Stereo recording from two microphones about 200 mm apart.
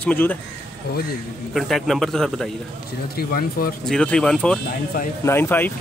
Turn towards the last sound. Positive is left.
turn(degrees=10)  # may be behind; listen again after turning